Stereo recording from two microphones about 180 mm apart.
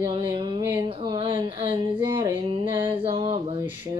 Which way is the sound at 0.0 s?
25° right (ahead or behind).